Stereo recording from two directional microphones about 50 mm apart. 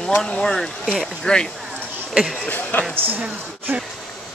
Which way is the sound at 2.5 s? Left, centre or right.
Left.